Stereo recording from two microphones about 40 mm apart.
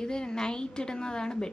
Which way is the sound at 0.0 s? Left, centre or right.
Centre.